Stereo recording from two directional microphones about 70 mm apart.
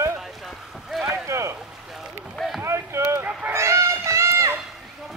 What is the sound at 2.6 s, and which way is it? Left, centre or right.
Rowboat, right.